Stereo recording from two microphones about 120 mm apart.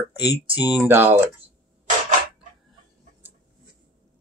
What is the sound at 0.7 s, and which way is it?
Speech, 15° right (ahead or behind).